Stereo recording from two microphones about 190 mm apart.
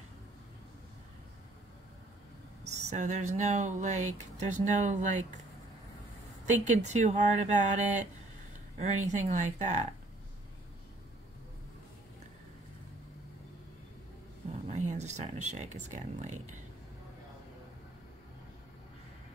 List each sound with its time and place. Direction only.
2.6 s speech: 40° right (ahead or behind)
6.4 s speech: 40° right (ahead or behind)
14.5 s speech: 35° right (ahead or behind)